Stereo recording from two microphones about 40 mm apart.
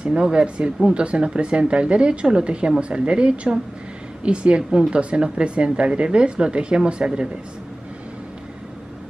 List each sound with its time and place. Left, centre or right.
0.0 s speech: right